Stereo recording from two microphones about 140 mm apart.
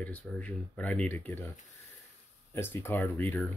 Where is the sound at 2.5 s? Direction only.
15° left (ahead or behind).